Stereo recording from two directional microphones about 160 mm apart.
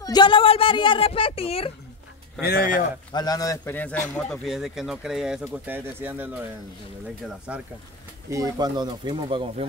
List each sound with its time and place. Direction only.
0.0 s speech: 30° left (ahead or behind)
2.4 s a man's voice: 65° left (ahead or behind)
3.1 s a man's voice: 25° left (ahead or behind); by 7.6 s 10° right (ahead or behind)
8.3 s speech: 20° right (ahead or behind)